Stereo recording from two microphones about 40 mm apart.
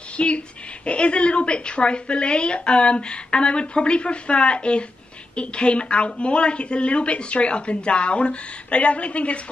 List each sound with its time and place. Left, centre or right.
0.2 s a woman's voice: left